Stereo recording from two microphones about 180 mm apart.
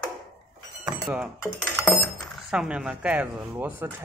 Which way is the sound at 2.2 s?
5° right (ahead or behind).